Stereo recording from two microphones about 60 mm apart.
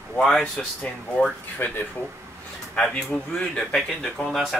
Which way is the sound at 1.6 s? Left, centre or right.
Left.